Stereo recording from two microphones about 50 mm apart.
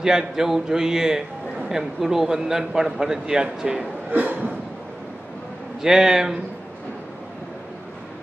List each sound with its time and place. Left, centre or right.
0.0 s a man's voice: centre
4.1 s a sound: right
5.8 s a man's voice: centre